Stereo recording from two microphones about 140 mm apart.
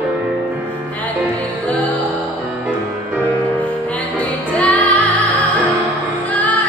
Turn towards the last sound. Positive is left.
turn(degrees=10)  # may be behind; listen again after turning